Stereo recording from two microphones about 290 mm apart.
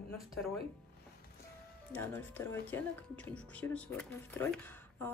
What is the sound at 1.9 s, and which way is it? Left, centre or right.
Speech, centre.